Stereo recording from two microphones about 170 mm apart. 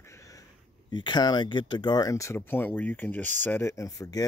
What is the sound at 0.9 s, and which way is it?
Speech, 25° left (ahead or behind).